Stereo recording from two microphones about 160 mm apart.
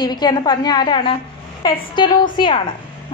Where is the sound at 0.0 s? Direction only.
25° left (ahead or behind).